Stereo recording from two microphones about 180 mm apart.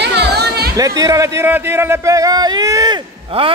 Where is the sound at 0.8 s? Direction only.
20° right (ahead or behind).